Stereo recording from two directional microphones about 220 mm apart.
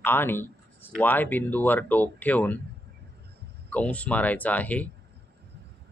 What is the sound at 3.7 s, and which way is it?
Speech, 5° left (ahead or behind).